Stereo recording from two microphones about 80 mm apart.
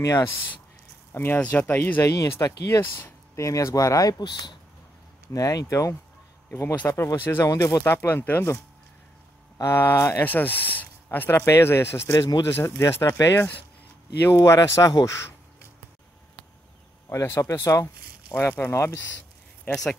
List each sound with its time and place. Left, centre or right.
0.0 s speech: left
1.1 s speech: left
2.0 s speech: left
4.2 s speech: left
5.3 s speech: left
6.8 s speech: left
7.4 s speech: left
9.6 s speech: left
10.2 s speech: left
12.4 s speech: left
12.8 s speech: left
17.1 s speech: left
19.7 s speech: centre